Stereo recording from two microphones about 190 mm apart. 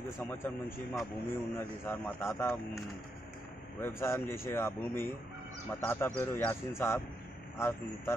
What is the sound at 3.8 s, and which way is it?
Speech, 15° left (ahead or behind).